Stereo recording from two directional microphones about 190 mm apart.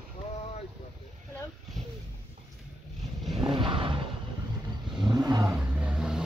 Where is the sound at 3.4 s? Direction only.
25° right (ahead or behind).